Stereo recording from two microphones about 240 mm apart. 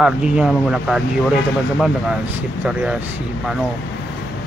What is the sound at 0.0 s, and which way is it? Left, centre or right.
Speech, centre.